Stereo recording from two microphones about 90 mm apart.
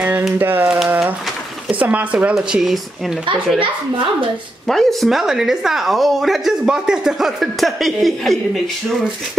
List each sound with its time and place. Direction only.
0.4 s a sound: 20° right (ahead or behind)
1.7 s speech: 15° right (ahead or behind)
2.3 s a woman's voice: 5° right (ahead or behind)
4.6 s a woman's voice: 5° left (ahead or behind)